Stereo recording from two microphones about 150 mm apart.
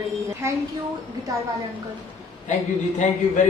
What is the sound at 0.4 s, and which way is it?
Speech, 20° right (ahead or behind).